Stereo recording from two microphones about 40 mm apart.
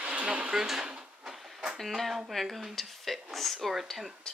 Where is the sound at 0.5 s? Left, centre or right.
Centre.